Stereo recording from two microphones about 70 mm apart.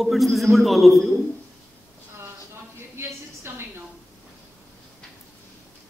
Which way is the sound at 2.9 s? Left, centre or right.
Right.